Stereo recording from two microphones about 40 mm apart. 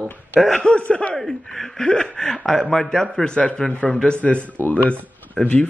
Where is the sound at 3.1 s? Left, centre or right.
Left.